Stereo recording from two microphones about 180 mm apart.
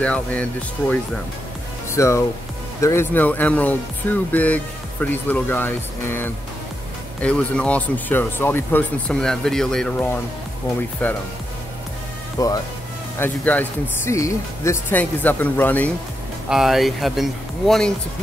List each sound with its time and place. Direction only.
0.0 s speech: 5° left (ahead or behind)
12.4 s speech: 20° left (ahead or behind)
13.2 s speech: 10° left (ahead or behind)
16.4 s speech: centre (ahead or behind)